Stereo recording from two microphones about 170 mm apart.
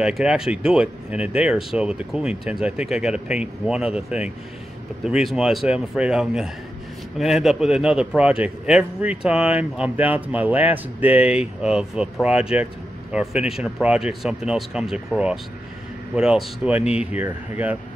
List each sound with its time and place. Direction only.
0.0 s a man's voice: 5° right (ahead or behind)